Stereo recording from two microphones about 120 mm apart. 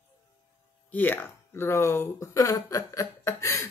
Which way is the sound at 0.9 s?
15° left (ahead or behind).